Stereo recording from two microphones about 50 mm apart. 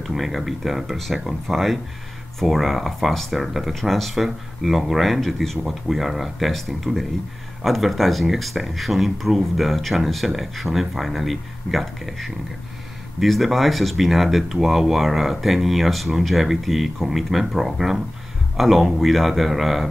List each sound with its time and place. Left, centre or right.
0.0 s speech: centre